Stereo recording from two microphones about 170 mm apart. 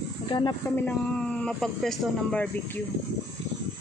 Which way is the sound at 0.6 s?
10° left (ahead or behind).